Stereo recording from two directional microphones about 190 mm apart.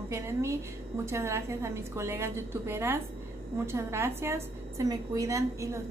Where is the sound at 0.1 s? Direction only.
15° right (ahead or behind).